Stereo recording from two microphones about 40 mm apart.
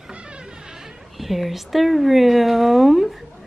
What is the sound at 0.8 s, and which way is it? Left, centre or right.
A woman's voice, centre.